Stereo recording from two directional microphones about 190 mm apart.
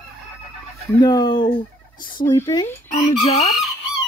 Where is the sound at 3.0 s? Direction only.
30° left (ahead or behind).